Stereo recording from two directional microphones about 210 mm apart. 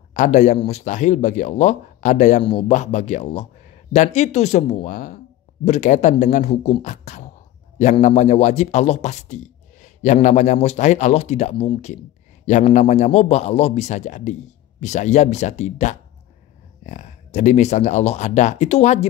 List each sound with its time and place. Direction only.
0.1 s speech: 35° left (ahead or behind)